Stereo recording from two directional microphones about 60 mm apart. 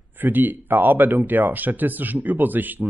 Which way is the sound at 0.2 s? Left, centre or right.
Right.